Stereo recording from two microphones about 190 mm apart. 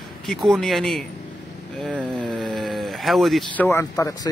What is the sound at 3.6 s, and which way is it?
Speech, 10° left (ahead or behind).